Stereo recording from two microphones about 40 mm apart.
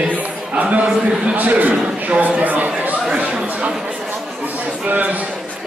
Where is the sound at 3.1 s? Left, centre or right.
Right.